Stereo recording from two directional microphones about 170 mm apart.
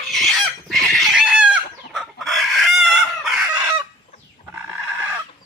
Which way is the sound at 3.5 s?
20° right (ahead or behind).